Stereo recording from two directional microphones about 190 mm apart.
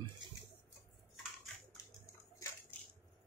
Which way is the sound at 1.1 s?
Centre (ahead or behind).